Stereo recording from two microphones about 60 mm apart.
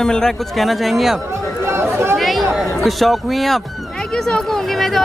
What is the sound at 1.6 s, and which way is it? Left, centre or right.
Chatter, right.